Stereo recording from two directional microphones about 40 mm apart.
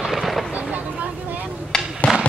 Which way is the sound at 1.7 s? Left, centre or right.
Centre.